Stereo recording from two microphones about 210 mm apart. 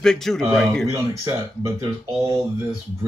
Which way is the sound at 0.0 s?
Centre (ahead or behind).